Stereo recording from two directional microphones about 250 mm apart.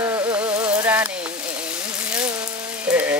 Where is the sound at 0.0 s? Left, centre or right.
Centre.